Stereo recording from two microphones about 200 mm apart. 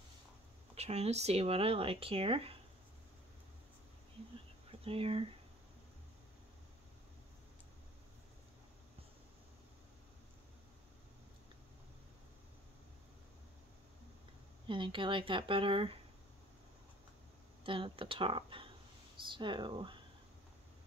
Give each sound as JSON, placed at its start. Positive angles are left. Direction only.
{"t": 0.7, "sound": "speech", "side_deg": -30}
{"t": 4.6, "sound": "speech", "side_deg": -30}
{"t": 14.7, "sound": "speech", "side_deg": -25}
{"t": 17.6, "sound": "speech", "side_deg": -25}